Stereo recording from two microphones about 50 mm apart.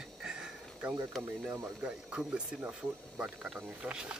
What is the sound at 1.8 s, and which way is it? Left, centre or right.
Speech, right.